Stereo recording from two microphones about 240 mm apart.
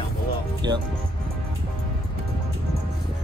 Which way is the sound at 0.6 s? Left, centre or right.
Centre.